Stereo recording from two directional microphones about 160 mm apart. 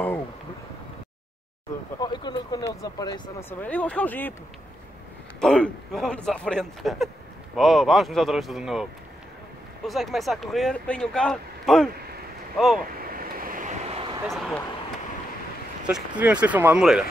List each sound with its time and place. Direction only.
2.0 s speech: 25° left (ahead or behind)
5.4 s speech: 5° left (ahead or behind)
9.8 s speech: centre (ahead or behind)
13.0 s a sound: 65° right (ahead or behind)
13.8 s a sound: 40° right (ahead or behind)
14.2 s speech: centre (ahead or behind)
15.9 s speech: 10° right (ahead or behind)